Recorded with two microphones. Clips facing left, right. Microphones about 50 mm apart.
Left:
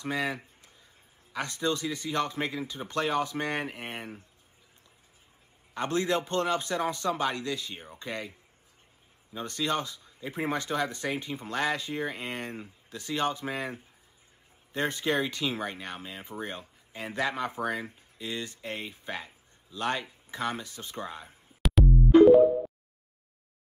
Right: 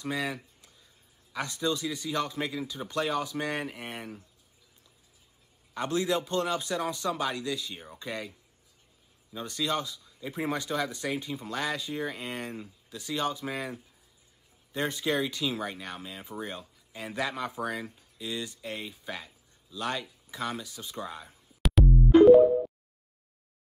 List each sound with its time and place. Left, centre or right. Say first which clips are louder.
0.1 s a sound: left 2 dB; left
1.3 s speech: even; left
5.8 s speech: left 1 dB; left
21.6 s music: even; centre